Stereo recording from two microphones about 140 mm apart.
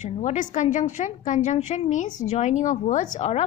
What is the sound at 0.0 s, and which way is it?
A woman's voice, 60° left (ahead or behind).